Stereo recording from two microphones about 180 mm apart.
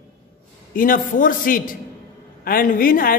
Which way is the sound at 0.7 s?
50° left (ahead or behind).